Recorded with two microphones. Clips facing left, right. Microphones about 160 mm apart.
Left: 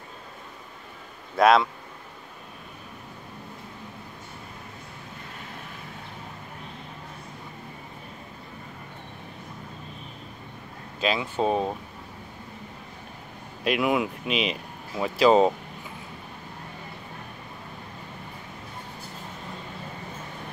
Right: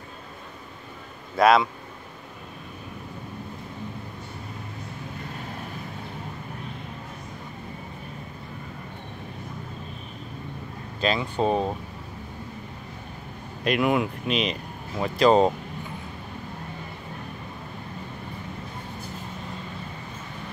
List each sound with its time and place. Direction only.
1.3 s speech: centre (ahead or behind)
11.0 s speech: 5° left (ahead or behind)
13.7 s speech: centre (ahead or behind)